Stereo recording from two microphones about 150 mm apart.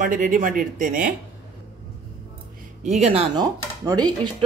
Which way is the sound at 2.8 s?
45° right (ahead or behind).